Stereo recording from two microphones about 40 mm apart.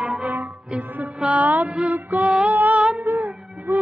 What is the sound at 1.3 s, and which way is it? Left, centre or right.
Music, right.